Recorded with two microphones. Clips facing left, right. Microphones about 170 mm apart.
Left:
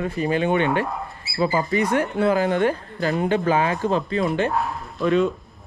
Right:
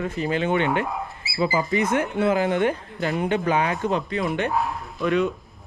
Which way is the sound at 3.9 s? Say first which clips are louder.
Left 3 dB; 30° left (ahead or behind).